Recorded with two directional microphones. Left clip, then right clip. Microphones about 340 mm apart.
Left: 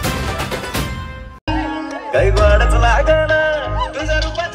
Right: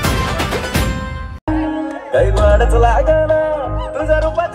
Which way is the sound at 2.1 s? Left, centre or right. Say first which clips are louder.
Right 1 dB; centre.